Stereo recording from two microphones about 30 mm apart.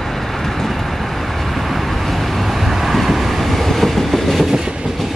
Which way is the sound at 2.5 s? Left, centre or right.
Centre.